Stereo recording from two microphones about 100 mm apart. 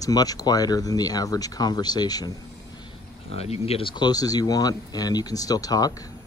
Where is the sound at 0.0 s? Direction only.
40° left (ahead or behind).